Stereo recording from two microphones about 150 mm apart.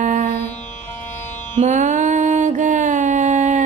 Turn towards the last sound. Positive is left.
turn(degrees=-45)  # may be behind; listen again after turning